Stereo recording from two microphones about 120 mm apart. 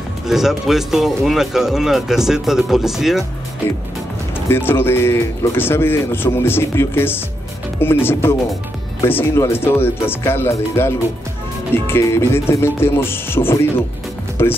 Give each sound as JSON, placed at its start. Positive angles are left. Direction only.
{"t": 0.3, "sound": "speech", "side_deg": -5}
{"t": 4.5, "sound": "speech", "side_deg": 20}